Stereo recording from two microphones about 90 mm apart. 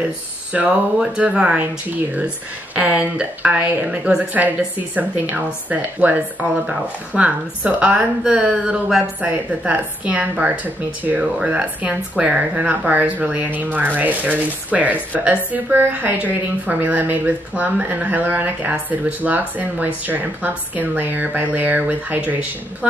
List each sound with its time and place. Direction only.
0.5 s speech: 10° right (ahead or behind)